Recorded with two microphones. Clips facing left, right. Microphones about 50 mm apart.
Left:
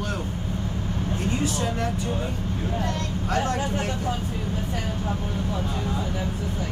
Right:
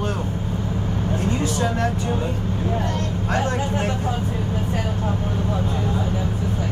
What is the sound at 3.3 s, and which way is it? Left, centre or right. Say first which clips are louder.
Vehicle: right 2 dB; right.